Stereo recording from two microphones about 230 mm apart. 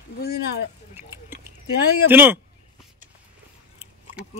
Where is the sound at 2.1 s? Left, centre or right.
Centre.